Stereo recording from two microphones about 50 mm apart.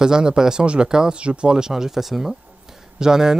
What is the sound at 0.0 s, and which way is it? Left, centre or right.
Speech, centre.